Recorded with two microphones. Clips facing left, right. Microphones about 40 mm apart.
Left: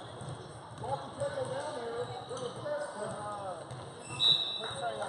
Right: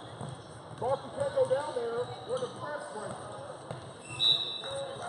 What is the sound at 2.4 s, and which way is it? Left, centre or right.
Speech, centre.